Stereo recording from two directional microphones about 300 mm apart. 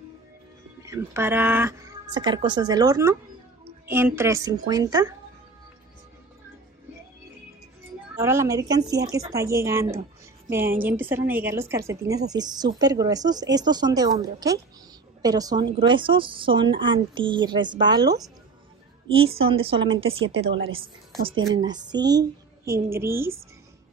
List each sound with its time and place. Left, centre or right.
0.8 s speech: centre
8.2 s a woman's voice: centre
21.5 s speech: centre